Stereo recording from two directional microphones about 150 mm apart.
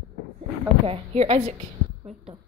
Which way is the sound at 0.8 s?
40° right (ahead or behind).